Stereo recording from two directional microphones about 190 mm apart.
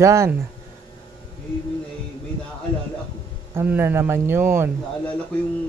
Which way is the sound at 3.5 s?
10° right (ahead or behind).